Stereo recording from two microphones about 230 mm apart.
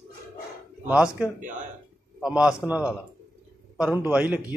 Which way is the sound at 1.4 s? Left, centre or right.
Right.